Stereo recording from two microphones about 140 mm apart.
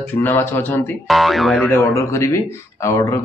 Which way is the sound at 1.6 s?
15° left (ahead or behind).